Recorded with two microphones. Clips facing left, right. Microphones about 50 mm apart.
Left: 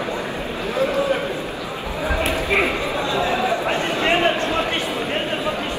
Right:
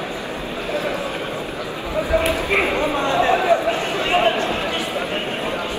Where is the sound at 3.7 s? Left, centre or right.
Left.